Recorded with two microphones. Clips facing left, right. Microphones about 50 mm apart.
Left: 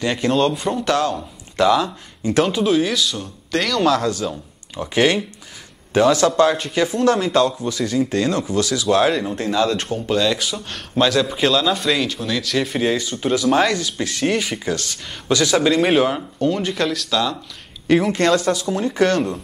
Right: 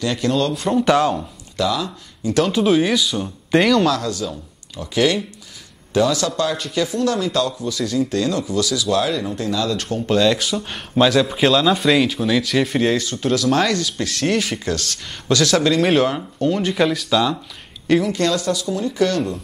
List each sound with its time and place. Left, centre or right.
0.0 s speech: left
0.5 s speech: centre
0.7 s speech: centre
1.6 s speech: left
2.6 s speech: centre
3.9 s speech: left
6.2 s speech: left
7.8 s speech: centre
8.1 s speech: left
9.8 s speech: centre
18.0 s speech: left